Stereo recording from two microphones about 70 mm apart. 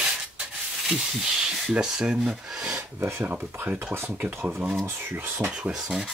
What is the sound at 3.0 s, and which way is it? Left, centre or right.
Speech, right.